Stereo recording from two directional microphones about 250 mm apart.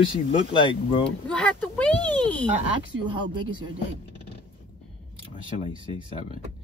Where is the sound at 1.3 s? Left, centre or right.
Centre.